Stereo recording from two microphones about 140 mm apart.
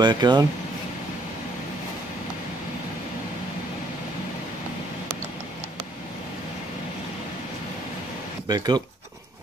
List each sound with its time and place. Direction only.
0.0 s speech: 30° right (ahead or behind)
8.5 s speech: 30° right (ahead or behind)